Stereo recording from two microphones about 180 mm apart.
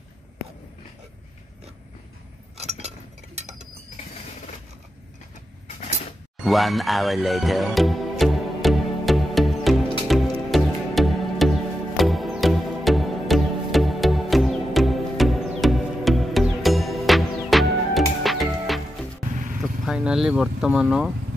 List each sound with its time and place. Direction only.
2.5 s a sound: 35° right (ahead or behind)
6.4 s music: centre (ahead or behind)
19.6 s speech: 5° right (ahead or behind)